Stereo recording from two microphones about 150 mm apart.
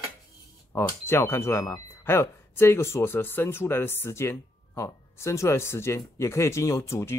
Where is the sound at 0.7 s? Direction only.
15° left (ahead or behind).